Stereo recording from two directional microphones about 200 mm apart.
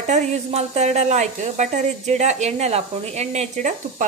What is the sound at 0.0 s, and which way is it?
A woman's voice, 35° right (ahead or behind).